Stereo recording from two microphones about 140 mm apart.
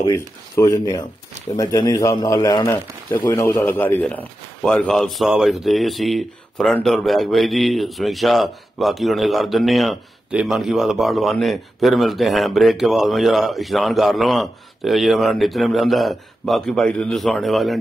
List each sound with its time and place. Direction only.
0.1 s speech: 20° left (ahead or behind); by 17.7 s centre (ahead or behind)